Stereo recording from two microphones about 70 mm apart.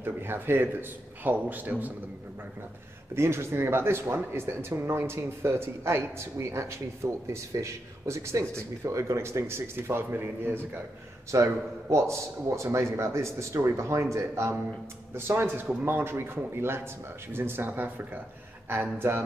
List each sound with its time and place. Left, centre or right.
0.0 s a man's voice: right
3.2 s speech: right
11.3 s speech: right